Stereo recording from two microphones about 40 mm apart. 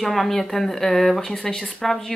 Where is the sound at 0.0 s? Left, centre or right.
Centre.